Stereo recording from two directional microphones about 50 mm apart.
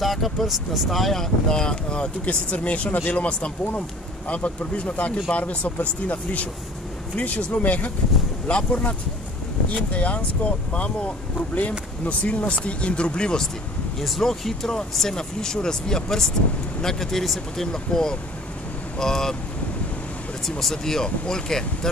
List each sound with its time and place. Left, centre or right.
0.0 s speech: centre
14.0 s speech: centre
20.4 s speech: centre